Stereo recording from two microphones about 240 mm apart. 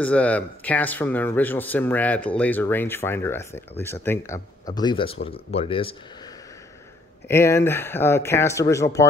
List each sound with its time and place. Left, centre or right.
0.0 s speech: centre
4.7 s speech: centre
7.2 s speech: centre